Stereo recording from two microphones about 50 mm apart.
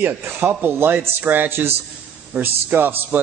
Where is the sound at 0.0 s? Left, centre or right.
Right.